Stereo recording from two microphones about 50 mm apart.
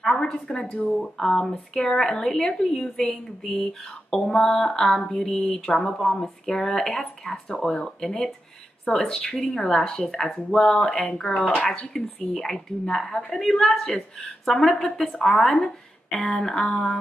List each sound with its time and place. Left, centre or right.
0.0 s a sound: centre
0.3 s speech: centre
0.9 s a woman's voice: centre
11.9 s a woman's voice: centre